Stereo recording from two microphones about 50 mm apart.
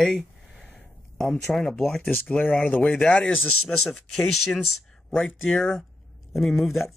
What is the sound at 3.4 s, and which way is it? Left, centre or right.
Speech, centre.